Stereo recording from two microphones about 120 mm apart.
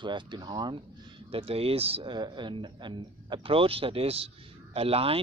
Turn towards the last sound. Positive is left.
turn(degrees=-55)  # may be behind; listen again after turning